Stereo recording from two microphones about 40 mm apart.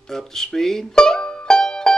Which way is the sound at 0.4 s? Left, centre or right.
Centre.